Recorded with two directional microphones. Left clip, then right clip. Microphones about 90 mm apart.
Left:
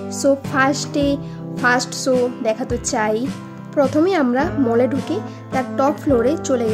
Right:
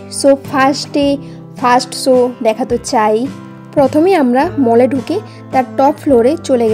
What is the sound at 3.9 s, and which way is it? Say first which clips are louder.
Speech: right 6 dB; 65° right (ahead or behind).